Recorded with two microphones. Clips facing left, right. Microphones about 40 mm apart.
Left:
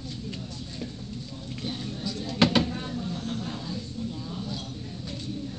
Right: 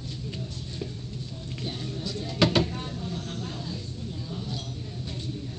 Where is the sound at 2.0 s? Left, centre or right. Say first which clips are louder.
Left 1 dB; centre.